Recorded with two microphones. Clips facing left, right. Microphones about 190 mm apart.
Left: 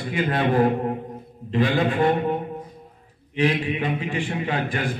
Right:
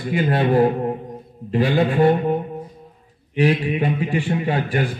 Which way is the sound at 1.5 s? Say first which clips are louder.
Right 3 dB; 35° right (ahead or behind).